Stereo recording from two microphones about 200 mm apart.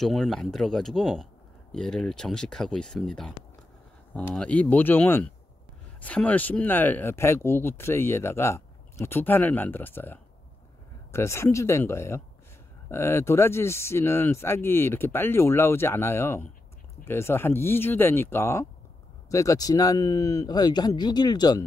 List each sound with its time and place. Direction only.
0.0 s speech: centre (ahead or behind); by 21.6 s 20° left (ahead or behind)